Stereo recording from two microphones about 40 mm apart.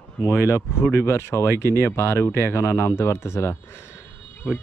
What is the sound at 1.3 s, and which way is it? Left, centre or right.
Speech, left.